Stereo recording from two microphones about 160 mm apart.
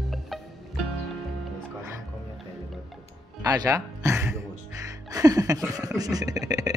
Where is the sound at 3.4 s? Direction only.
20° right (ahead or behind).